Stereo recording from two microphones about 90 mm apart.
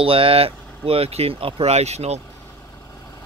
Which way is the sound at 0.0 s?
90° right.